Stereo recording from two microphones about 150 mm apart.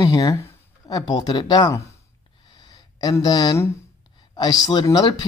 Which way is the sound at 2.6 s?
25° left (ahead or behind).